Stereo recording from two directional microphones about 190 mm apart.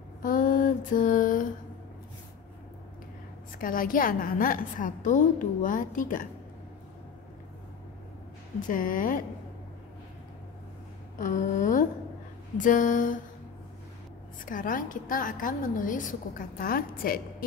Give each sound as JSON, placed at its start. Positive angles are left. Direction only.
{"t": 0.2, "sound": "a sound", "side_deg": 45}
{"t": 3.5, "sound": "a woman's voice", "side_deg": 45}
{"t": 8.5, "sound": "a woman's voice", "side_deg": 45}
{"t": 11.1, "sound": "a woman's voice", "side_deg": 45}
{"t": 14.4, "sound": "a woman's voice", "side_deg": 45}